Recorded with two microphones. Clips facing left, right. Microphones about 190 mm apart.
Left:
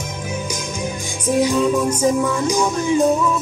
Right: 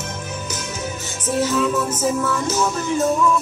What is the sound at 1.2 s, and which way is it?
Music, 10° left (ahead or behind).